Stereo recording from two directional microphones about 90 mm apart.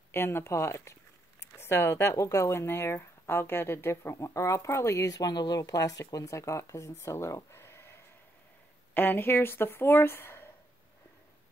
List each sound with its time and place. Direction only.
0.1 s speech: 30° left (ahead or behind)